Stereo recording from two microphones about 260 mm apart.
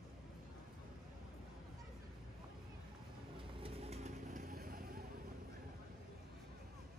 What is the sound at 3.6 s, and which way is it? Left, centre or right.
Vehicle, right.